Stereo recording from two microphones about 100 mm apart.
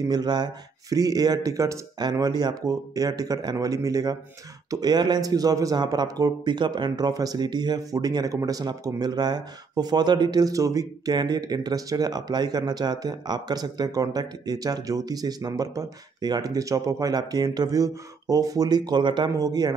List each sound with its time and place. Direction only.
0.1 s a man's voice: 45° right (ahead or behind)
19.3 s a man's voice: 40° right (ahead or behind)